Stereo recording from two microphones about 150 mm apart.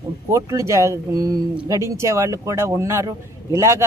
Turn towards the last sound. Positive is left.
turn(degrees=-20)  # may be behind; listen again after turning